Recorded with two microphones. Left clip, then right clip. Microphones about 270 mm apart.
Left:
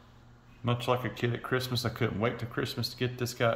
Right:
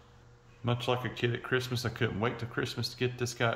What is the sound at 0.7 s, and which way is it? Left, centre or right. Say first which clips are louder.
Speech: left 2 dB; centre.